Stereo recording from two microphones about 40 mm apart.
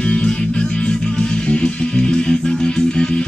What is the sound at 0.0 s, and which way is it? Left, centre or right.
Music, left.